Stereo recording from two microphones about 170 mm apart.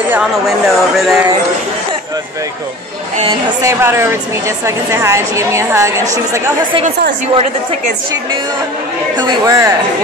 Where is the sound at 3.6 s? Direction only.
15° right (ahead or behind).